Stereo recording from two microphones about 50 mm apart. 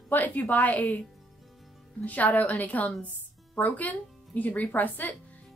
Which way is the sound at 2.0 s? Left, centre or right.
Left.